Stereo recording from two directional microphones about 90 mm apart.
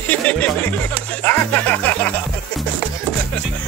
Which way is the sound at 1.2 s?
15° left (ahead or behind).